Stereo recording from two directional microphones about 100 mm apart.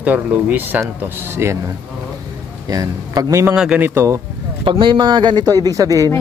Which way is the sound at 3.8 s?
25° right (ahead or behind).